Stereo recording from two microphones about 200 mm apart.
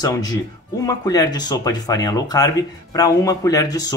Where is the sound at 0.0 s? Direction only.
20° left (ahead or behind).